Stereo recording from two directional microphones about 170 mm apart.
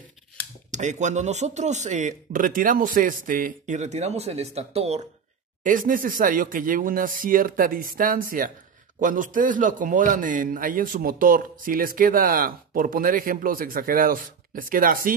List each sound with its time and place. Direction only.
0.7 s speech: 45° right (ahead or behind)
5.6 s a man's voice: 50° right (ahead or behind)